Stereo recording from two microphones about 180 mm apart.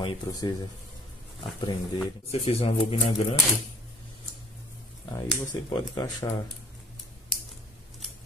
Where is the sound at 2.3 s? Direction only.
35° left (ahead or behind).